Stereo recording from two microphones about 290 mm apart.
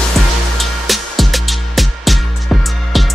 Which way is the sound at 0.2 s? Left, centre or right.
Centre.